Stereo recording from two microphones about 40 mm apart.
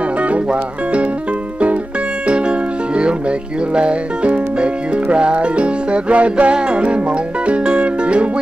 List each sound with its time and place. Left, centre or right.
0.2 s music: right
2.2 s music: right